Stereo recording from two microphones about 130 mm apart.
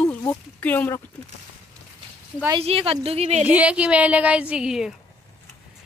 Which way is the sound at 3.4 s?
10° right (ahead or behind).